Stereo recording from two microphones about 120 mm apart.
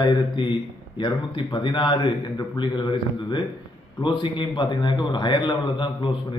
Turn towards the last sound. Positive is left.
turn(degrees=40)  # may be behind; listen again after turning